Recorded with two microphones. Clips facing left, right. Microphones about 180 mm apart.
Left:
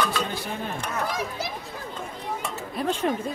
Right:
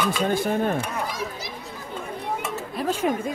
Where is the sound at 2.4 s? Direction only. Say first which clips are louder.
Right 1 dB; centre (ahead or behind).